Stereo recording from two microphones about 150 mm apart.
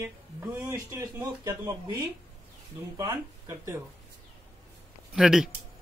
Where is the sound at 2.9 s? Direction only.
20° right (ahead or behind).